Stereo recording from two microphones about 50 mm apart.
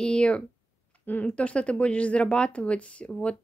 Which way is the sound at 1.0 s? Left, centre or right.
Left.